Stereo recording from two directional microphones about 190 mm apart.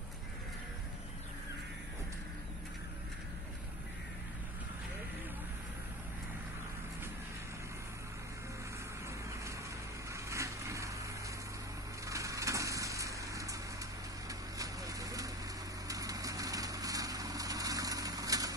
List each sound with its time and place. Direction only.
10.1 s vehicle: 15° right (ahead or behind)
12.1 s a sound: 15° right (ahead or behind)
14.6 s vehicle: 20° right (ahead or behind)